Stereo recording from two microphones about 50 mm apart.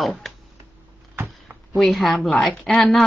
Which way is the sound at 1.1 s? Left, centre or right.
Right.